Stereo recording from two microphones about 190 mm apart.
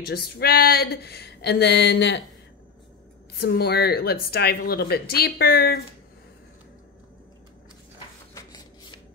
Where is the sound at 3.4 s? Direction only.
60° left (ahead or behind).